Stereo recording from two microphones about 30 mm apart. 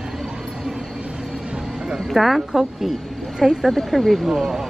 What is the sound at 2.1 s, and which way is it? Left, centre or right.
Speech, centre.